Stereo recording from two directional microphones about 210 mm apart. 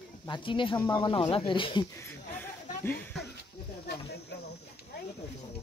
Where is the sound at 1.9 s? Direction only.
10° left (ahead or behind).